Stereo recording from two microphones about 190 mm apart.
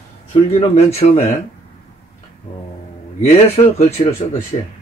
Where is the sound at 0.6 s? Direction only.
30° left (ahead or behind).